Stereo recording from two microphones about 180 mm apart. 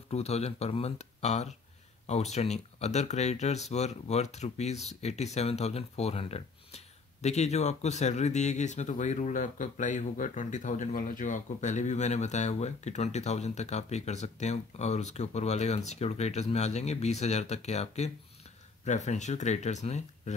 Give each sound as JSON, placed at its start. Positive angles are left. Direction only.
{"t": 0.1, "sound": "speech", "side_deg": 35}